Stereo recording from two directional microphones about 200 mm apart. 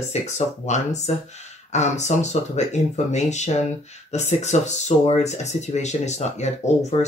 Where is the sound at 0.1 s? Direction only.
35° left (ahead or behind).